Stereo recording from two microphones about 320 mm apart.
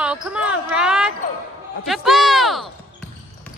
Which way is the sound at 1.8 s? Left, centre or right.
Centre.